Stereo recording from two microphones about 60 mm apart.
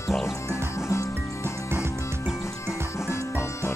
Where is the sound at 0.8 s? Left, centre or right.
Left.